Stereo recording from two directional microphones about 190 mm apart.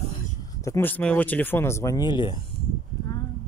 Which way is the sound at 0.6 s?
10° left (ahead or behind).